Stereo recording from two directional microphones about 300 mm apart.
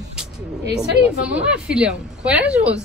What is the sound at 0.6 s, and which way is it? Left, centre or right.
Speech, right.